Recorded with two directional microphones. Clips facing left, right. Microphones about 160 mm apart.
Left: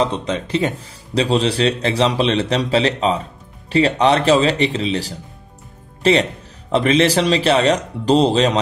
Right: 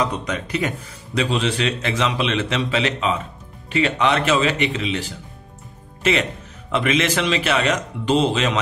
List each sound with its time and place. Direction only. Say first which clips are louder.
0.0 s a man's voice: left 4 dB; 30° left (ahead or behind)